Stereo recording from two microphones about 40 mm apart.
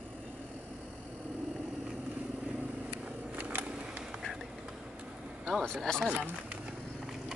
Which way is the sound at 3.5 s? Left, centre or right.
Right.